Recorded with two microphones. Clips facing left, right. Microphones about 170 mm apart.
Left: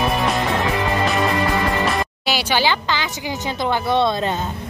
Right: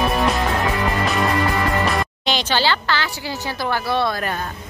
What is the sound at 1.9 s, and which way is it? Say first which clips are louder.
A woman's voice: even; 5° left (ahead or behind).